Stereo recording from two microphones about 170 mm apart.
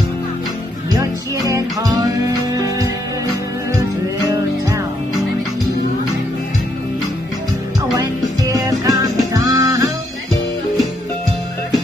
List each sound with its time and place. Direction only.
1.5 s music: 20° right (ahead or behind)
8.0 s music: 20° right (ahead or behind)